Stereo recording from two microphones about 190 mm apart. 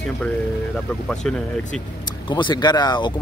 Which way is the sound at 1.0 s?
5° left (ahead or behind).